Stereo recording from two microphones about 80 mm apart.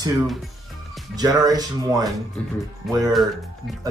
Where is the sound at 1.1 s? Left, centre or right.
Right.